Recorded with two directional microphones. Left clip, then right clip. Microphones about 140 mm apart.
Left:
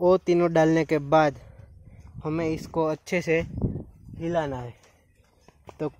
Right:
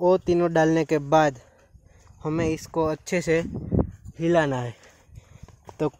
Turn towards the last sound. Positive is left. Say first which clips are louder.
# right 5 dB
turn(degrees=-45)  # may be behind; listen again after turning